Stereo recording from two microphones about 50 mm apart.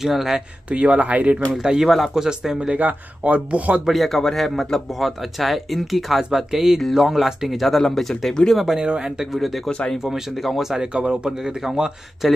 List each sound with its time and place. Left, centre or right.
0.0 s speech: centre
0.7 s speech: right
1.6 s speech: centre
2.7 s speech: right
3.8 s speech: centre
8.7 s speech: centre
9.3 s speech: centre
9.7 s speech: centre
10.0 s speech: centre
10.9 s speech: centre